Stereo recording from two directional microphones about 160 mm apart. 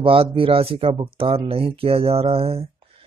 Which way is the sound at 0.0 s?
35° right (ahead or behind).